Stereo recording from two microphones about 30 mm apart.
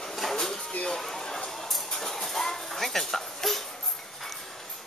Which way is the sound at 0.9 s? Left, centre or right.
Centre.